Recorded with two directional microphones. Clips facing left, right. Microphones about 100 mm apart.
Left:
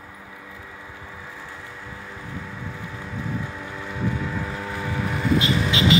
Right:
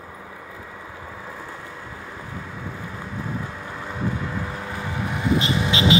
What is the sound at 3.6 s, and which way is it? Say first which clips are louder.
Vehicle: right 1 dB; 15° right (ahead or behind).